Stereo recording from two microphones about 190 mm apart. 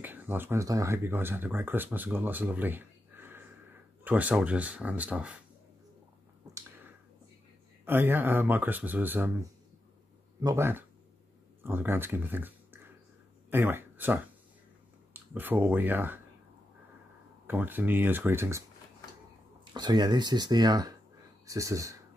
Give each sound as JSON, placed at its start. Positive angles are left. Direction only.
{"t": 0.0, "sound": "speech", "side_deg": -10}
{"t": 6.5, "sound": "a sound", "side_deg": -20}
{"t": 7.8, "sound": "speech", "side_deg": -10}
{"t": 10.4, "sound": "speech", "side_deg": -15}
{"t": 17.5, "sound": "speech", "side_deg": -10}
{"t": 19.6, "sound": "speech", "side_deg": -20}